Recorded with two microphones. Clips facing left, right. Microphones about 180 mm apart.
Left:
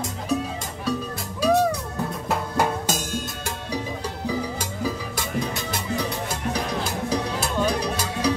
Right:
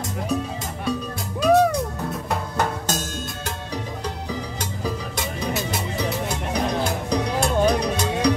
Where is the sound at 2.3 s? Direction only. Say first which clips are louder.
Left 2 dB; 10° left (ahead or behind).